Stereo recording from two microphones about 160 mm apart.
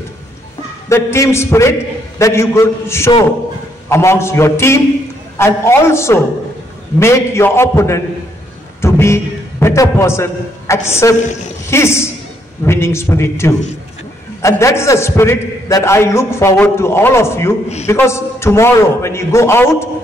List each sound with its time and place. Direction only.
0.8 s a man's voice: 20° left (ahead or behind)